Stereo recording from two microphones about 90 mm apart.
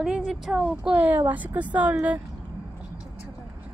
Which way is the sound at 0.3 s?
5° right (ahead or behind).